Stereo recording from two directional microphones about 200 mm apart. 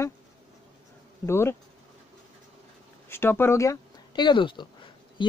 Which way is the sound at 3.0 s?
10° left (ahead or behind).